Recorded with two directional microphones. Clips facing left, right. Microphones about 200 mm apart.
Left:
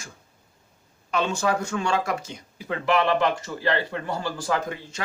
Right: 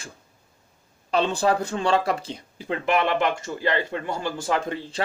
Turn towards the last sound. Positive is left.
turn(degrees=-30)  # may be behind; listen again after turning